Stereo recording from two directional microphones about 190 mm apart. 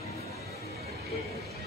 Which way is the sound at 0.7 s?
55° right (ahead or behind).